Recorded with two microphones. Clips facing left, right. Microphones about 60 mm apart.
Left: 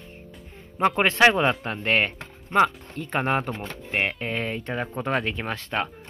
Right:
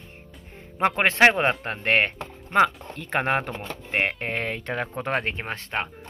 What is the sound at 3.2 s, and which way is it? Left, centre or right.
A woman's voice, right.